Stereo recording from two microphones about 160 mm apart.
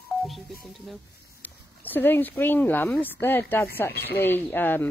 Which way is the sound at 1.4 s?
10° left (ahead or behind).